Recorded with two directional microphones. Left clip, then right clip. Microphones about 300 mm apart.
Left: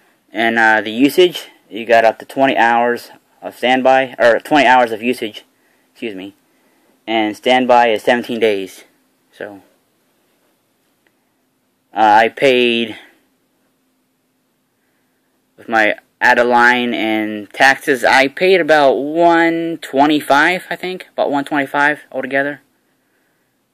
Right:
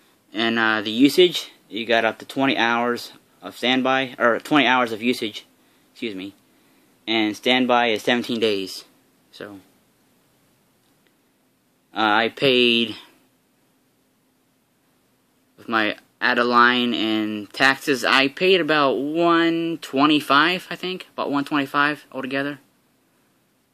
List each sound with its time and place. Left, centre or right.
0.3 s speech: centre
11.9 s speech: centre
15.5 s speech: centre